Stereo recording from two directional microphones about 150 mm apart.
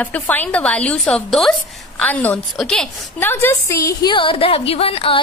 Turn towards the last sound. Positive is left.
turn(degrees=40)  # may be behind; listen again after turning